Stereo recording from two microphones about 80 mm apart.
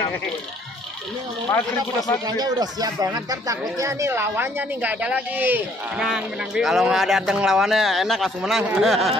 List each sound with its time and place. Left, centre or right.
2.2 s speech: right
5.9 s speech: centre